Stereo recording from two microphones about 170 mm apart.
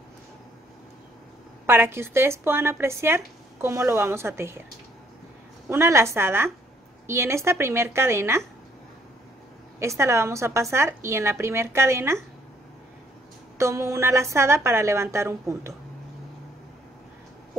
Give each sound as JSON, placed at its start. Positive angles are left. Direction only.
{"t": 1.7, "sound": "a woman's voice", "side_deg": -15}
{"t": 5.7, "sound": "a woman's voice", "side_deg": -15}
{"t": 9.8, "sound": "a woman's voice", "side_deg": -15}
{"t": 13.6, "sound": "a woman's voice", "side_deg": -15}